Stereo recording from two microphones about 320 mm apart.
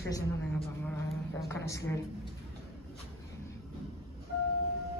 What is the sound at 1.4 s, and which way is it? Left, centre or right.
Speech, centre.